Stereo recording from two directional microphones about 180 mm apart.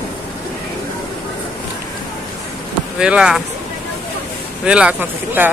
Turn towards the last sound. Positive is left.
turn(degrees=-10)  # may be behind; listen again after turning